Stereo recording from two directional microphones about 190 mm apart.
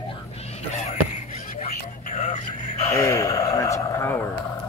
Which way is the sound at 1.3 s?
40° left (ahead or behind).